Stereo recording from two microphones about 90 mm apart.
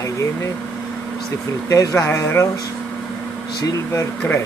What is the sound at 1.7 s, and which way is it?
Speech, 35° left (ahead or behind).